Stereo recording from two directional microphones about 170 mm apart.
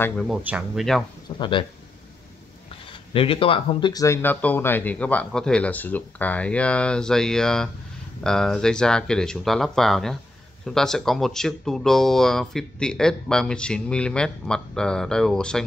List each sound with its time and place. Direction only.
0.3 s speech: 10° right (ahead or behind)
1.4 s speech: 30° left (ahead or behind)
2.9 s speech: 30° left (ahead or behind); by 15.6 s 5° left (ahead or behind)